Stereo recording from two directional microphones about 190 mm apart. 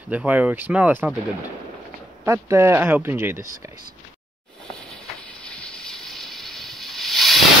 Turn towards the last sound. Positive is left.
turn(degrees=0)  # may be behind; listen again after turning